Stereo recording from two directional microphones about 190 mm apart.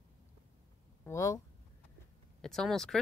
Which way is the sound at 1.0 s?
15° left (ahead or behind).